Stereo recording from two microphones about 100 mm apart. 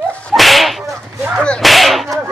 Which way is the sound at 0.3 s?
Centre (ahead or behind).